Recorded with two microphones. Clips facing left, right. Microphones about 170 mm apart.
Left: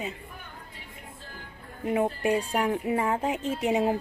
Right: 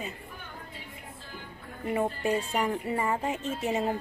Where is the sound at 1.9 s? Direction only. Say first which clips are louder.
Left 3 dB; 10° left (ahead or behind).